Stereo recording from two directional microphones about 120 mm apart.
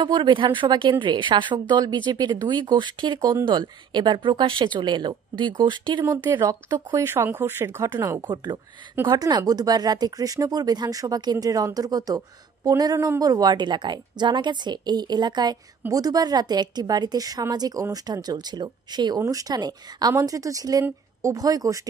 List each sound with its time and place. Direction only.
0.0 s a woman's voice: 40° right (ahead or behind)
6.0 s a woman's voice: 25° right (ahead or behind)
7.8 s a woman's voice: 30° right (ahead or behind)